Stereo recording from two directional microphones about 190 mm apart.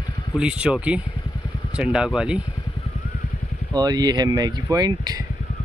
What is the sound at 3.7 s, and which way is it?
Speech, 20° right (ahead or behind).